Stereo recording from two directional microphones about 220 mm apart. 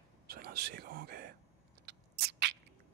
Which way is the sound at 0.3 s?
45° right (ahead or behind).